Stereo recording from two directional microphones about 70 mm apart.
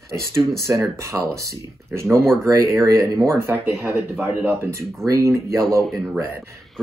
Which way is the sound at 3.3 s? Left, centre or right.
Right.